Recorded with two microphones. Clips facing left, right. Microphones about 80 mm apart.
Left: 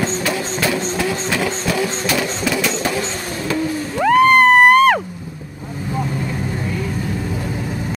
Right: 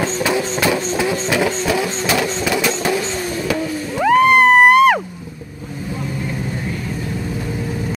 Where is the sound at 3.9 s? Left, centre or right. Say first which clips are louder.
Even; centre.